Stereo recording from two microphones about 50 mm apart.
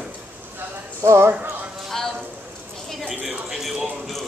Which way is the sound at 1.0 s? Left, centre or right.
Right.